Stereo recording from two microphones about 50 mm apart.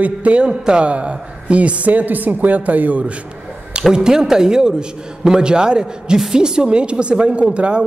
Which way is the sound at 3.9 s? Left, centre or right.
Centre.